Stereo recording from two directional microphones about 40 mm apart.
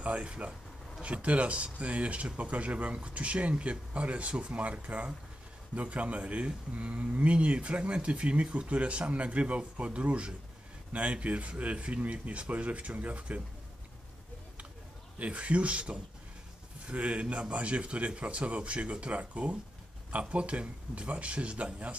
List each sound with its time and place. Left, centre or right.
0.0 s speech: right
15.1 s speech: right